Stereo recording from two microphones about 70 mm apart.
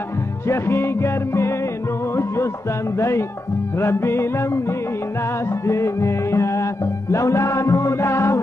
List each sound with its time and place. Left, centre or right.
0.5 s music: left